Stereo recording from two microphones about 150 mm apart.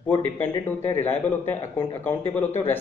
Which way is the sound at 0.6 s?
15° left (ahead or behind).